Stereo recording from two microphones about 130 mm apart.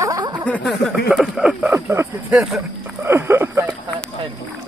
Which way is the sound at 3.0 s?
20° right (ahead or behind).